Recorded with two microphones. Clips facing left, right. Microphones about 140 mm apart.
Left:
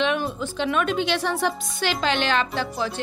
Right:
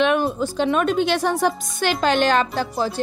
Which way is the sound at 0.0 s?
50° right (ahead or behind).